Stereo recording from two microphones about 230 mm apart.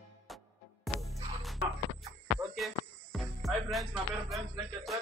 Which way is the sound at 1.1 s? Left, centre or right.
Right.